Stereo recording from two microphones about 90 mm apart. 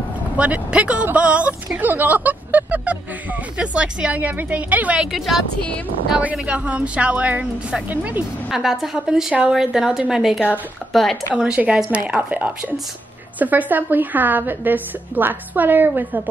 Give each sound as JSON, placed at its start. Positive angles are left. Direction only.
{"t": 0.4, "sound": "a woman's voice", "side_deg": -15}
{"t": 5.0, "sound": "a woman's voice", "side_deg": 0}
{"t": 8.5, "sound": "a woman's voice", "side_deg": -5}
{"t": 11.3, "sound": "a woman's voice", "side_deg": -10}